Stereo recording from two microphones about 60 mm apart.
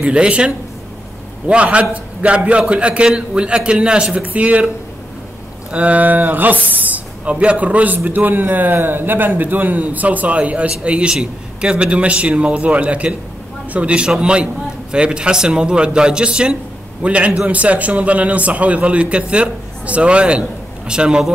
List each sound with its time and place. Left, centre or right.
0.0 s a man's voice: centre
1.5 s a man's voice: centre
5.7 s a man's voice: right